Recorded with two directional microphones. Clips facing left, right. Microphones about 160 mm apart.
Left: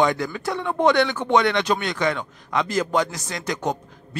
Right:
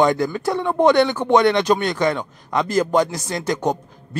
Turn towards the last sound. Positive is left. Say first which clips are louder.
# right 4 dB
turn(degrees=-35)  # may be behind; listen again after turning